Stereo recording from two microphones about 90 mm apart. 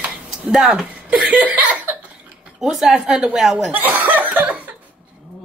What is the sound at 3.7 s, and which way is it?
Speech, 20° right (ahead or behind).